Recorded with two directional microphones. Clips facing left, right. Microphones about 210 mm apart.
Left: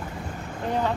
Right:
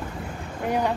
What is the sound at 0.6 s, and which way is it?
Speech, 10° right (ahead or behind).